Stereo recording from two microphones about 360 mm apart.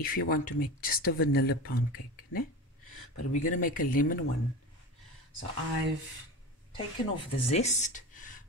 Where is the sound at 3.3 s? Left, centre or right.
Left.